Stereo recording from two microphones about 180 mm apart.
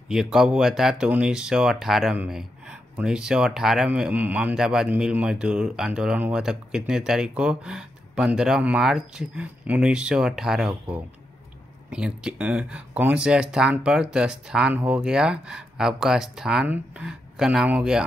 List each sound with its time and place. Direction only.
0.1 s speech: centre (ahead or behind)